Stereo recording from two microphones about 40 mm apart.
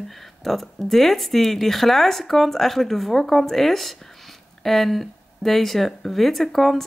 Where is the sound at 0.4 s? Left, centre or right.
Centre.